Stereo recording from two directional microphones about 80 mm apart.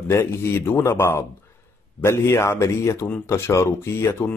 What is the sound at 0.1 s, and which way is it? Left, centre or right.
A man's voice, left.